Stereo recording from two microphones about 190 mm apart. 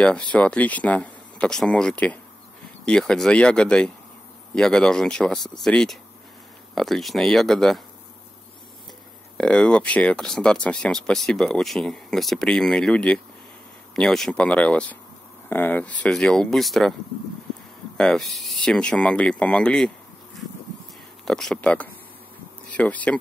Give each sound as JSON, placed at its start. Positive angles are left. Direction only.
{"t": 0.0, "sound": "speech", "side_deg": 5}
{"t": 9.4, "sound": "speech", "side_deg": 5}
{"t": 17.9, "sound": "speech", "side_deg": 5}
{"t": 21.3, "sound": "speech", "side_deg": 0}